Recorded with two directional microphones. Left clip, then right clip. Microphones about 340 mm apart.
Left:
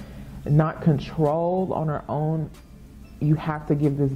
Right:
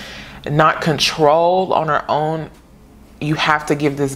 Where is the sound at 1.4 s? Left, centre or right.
Right.